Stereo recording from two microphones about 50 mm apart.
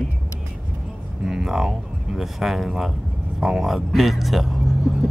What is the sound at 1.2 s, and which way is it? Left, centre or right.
Speech, centre.